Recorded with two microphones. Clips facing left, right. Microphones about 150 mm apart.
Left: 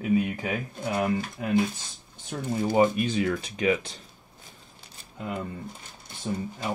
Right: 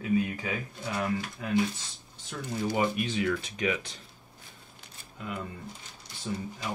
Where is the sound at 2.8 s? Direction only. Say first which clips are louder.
Left 6 dB; 40° left (ahead or behind).